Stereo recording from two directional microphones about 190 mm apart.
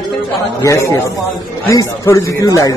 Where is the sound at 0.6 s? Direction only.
15° left (ahead or behind).